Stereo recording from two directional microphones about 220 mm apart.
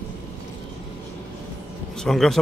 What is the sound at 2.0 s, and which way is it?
Speech, centre (ahead or behind).